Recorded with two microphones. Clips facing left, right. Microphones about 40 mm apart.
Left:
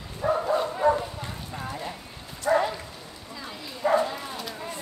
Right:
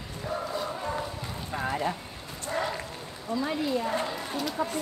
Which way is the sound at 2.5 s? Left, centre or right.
Left.